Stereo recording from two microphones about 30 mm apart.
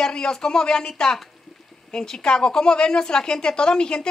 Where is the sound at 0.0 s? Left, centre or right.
Left.